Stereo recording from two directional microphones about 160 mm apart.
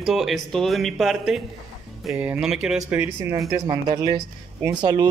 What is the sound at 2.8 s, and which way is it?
Speech, 15° right (ahead or behind).